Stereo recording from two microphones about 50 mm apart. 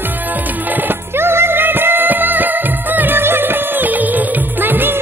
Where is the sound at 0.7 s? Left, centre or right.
Right.